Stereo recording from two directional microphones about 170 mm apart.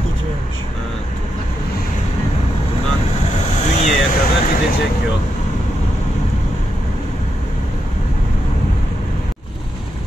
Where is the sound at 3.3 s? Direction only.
40° left (ahead or behind).